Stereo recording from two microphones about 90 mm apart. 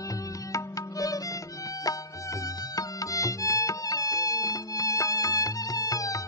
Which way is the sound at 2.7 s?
40° left (ahead or behind).